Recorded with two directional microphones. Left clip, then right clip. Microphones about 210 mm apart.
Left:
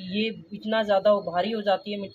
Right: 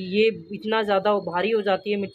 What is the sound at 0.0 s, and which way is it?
Speech, 40° right (ahead or behind).